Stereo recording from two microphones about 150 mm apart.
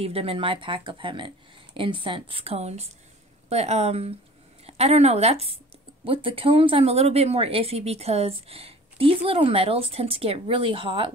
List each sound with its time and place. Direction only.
0.0 s speech: 40° right (ahead or behind)